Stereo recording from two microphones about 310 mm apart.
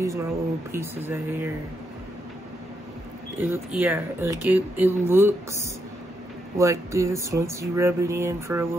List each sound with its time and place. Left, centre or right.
0.0 s speech: centre
3.3 s speech: centre